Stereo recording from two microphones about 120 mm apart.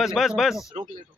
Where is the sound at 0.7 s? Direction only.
65° right (ahead or behind).